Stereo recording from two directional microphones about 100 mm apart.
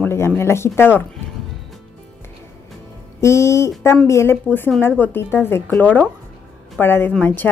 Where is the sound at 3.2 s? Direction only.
30° left (ahead or behind).